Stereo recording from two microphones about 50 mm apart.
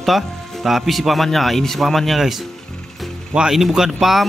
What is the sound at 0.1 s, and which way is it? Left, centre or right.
Speech, centre.